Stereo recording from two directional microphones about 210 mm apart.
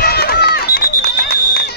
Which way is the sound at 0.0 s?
45° left (ahead or behind).